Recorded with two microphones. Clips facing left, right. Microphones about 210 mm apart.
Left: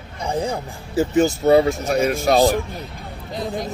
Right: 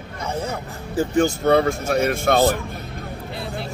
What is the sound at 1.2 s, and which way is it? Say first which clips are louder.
Speech: left 2 dB; 5° left (ahead or behind).